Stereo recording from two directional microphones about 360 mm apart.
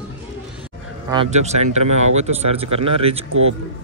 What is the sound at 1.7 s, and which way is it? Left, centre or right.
Speech, right.